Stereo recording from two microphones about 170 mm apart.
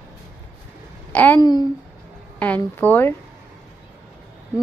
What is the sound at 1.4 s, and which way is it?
Speech, 25° left (ahead or behind).